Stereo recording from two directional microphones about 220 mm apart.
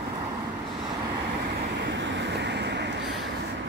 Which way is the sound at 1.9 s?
55° right (ahead or behind).